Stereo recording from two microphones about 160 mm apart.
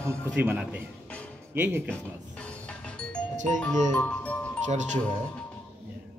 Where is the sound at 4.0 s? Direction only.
10° left (ahead or behind).